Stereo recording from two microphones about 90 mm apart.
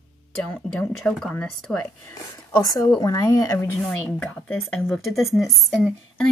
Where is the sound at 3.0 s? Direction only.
35° left (ahead or behind).